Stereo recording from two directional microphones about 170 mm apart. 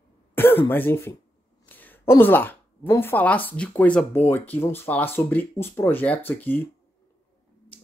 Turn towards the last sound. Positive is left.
turn(degrees=10)  # may be behind; listen again after turning